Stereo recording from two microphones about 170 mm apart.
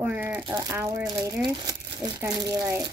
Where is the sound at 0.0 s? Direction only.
10° right (ahead or behind).